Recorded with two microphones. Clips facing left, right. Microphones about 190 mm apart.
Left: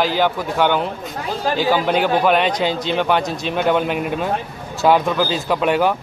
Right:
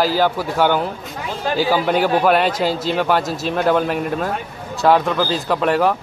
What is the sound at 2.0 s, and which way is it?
A man's voice, 5° right (ahead or behind).